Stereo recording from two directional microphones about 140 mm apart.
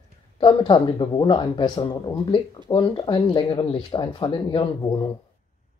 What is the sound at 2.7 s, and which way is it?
Speech, 35° left (ahead or behind).